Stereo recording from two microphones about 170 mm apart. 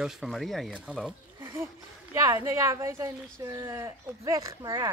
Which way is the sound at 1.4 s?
15° right (ahead or behind).